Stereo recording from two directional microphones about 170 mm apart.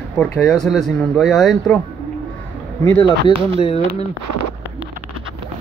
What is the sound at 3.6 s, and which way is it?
Speech, 35° left (ahead or behind).